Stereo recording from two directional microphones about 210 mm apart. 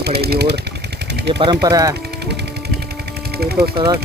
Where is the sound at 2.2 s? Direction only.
50° right (ahead or behind).